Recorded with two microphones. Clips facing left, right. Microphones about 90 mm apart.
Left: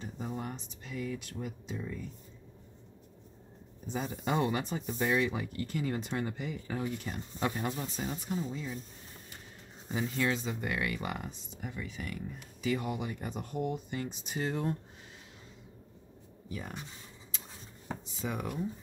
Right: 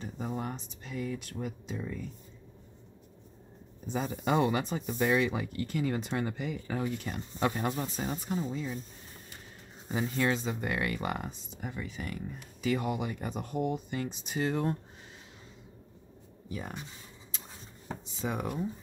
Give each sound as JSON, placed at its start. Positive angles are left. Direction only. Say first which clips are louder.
{"t": 0.0, "sound": "a sound", "louder": "right 3 dB", "side_deg": -55}
{"t": 1.4, "sound": "speech", "louder": "right 2 dB", "side_deg": -60}
{"t": 3.9, "sound": "speech", "louder": "right 3 dB", "side_deg": -75}
{"t": 7.1, "sound": "speech", "louder": "right 3 dB", "side_deg": -65}
{"t": 7.8, "sound": "speech", "louder": "right 2 dB", "side_deg": -45}
{"t": 9.8, "sound": "speech", "louder": "right 2 dB", "side_deg": -35}
{"t": 12.6, "sound": "speech", "louder": "right 2 dB", "side_deg": -65}
{"t": 16.4, "sound": "speech", "louder": "right 2 dB", "side_deg": -25}
{"t": 18.2, "sound": "speech", "louder": "right 3 dB", "side_deg": -25}